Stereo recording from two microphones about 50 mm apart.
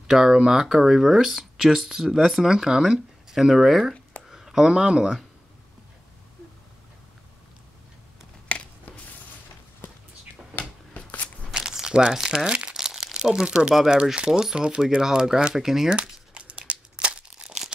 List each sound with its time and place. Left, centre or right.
0.0 s speech: centre
8.5 s a sound: left
10.6 s a sound: left
11.5 s crumpling: centre
12.4 s speech: centre
12.7 s crumpling: centre
13.7 s speech: centre
16.0 s crumpling: right